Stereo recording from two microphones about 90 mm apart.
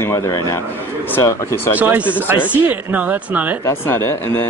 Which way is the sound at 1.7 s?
15° right (ahead or behind).